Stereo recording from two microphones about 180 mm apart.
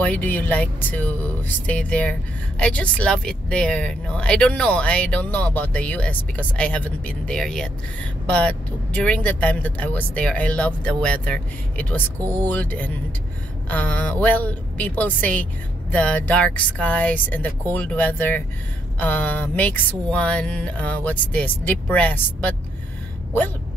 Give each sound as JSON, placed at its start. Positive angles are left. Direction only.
{"t": 0.0, "sound": "speech", "side_deg": 10}